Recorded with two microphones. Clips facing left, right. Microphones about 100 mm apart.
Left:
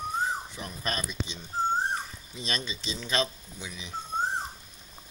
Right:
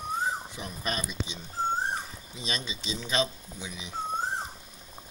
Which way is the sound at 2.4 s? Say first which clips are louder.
Left 1 dB; 15° right (ahead or behind).